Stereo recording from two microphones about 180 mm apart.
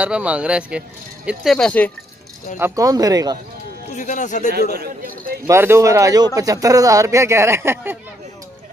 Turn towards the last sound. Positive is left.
turn(degrees=-15)  # may be behind; listen again after turning